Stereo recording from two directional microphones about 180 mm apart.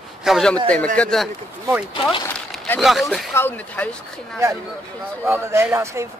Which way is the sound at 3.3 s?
10° left (ahead or behind).